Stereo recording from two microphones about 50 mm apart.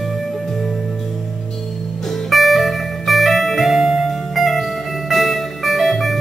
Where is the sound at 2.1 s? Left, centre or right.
Centre.